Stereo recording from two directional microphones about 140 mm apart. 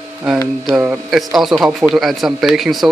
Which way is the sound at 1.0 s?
Centre (ahead or behind).